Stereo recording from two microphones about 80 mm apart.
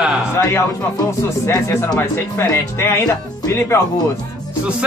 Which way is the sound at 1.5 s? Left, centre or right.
Left.